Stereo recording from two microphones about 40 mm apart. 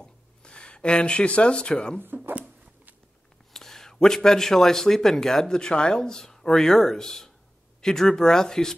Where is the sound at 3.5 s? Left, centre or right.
Centre.